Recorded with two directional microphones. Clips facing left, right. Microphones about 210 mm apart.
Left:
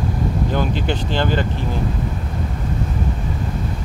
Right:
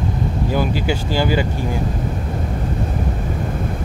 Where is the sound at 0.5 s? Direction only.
10° right (ahead or behind).